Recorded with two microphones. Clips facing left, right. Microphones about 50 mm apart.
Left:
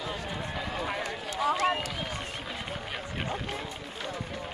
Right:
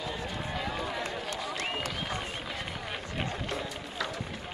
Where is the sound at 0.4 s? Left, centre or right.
Centre.